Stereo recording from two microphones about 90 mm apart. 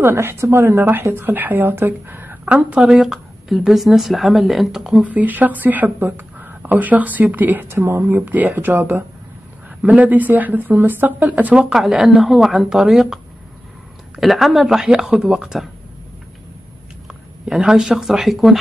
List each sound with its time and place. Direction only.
0.0 s speech: 25° right (ahead or behind); by 5.0 s 5° right (ahead or behind)
5.0 s speech: 20° right (ahead or behind)
17.1 s speech: 5° right (ahead or behind)